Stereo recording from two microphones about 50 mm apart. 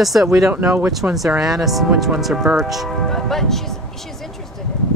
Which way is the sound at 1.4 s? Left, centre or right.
Centre.